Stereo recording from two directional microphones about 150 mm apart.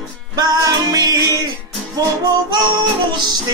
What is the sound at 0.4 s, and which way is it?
Music, 25° right (ahead or behind).